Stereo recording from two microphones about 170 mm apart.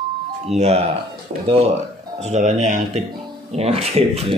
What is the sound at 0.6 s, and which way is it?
Speech, 40° right (ahead or behind).